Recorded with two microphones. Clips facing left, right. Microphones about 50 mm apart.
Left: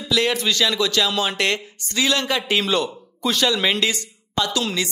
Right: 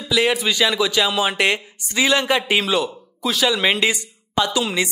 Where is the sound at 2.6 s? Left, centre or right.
Centre.